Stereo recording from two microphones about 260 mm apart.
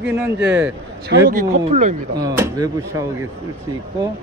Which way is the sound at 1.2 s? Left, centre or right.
Right.